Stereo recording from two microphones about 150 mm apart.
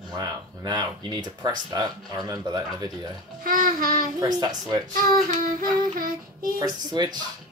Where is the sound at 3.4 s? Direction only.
65° right (ahead or behind).